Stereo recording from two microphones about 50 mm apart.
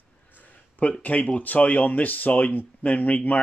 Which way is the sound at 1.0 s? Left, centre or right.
Left.